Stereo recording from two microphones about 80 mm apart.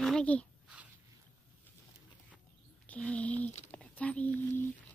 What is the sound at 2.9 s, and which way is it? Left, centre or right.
Speech, centre.